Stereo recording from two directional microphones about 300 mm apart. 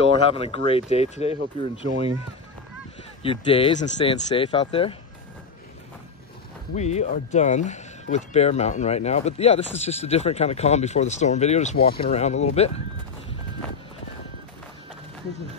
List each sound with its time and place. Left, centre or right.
0.3 s speech: centre
1.9 s speech: right
3.2 s speech: centre
6.7 s speech: left